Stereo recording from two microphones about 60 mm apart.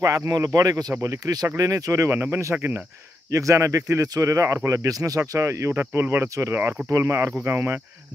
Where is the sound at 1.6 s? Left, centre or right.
Right.